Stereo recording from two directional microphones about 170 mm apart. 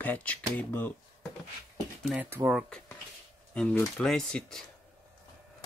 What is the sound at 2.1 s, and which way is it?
Speech, 10° right (ahead or behind).